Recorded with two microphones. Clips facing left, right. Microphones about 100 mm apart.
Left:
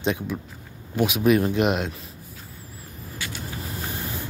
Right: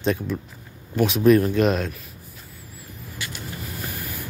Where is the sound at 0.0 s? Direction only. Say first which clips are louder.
Right 2 dB; 15° left (ahead or behind).